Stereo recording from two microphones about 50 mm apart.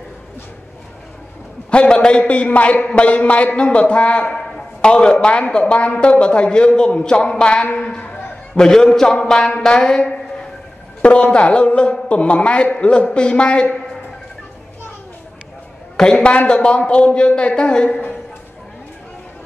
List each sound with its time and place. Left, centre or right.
1.7 s a man's voice: left
7.7 s a sound: left
9.6 s a woman's voice: centre
16.0 s a man's voice: centre